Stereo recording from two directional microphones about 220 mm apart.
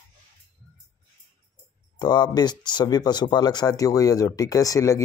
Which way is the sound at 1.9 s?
20° left (ahead or behind).